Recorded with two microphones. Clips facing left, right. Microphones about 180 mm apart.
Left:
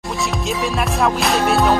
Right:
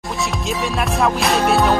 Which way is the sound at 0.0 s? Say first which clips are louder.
Left 1 dB; centre (ahead or behind).